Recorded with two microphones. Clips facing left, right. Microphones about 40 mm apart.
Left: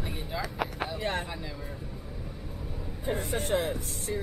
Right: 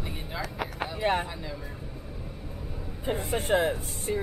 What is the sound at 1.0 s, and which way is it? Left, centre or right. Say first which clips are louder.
Speech: right 7 dB; right.